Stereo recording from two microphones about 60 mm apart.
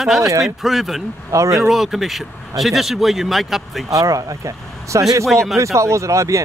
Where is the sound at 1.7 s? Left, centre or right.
Centre.